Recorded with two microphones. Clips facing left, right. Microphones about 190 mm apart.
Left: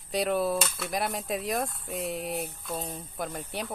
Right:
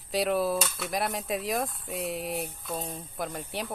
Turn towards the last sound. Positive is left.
turn(degrees=0)  # may be behind; listen again after turning